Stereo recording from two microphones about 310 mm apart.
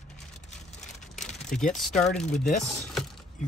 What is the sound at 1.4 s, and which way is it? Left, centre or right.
Speech, centre.